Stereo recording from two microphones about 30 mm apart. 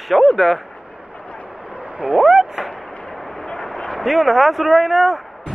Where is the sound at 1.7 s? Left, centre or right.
Right.